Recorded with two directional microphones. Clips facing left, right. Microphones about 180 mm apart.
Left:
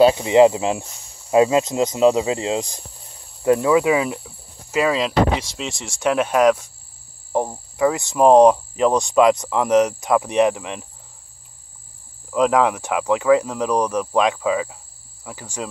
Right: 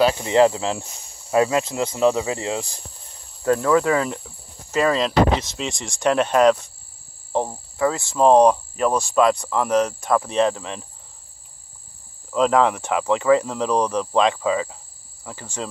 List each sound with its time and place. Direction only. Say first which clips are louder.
0.0 s cricket: left 4 dB; 15° left (ahead or behind)
1.3 s speech: left 4 dB; 20° left (ahead or behind)
3.4 s cricket: left 2 dB; 15° left (ahead or behind)
12.3 s cricket: left 1 dB; 10° left (ahead or behind)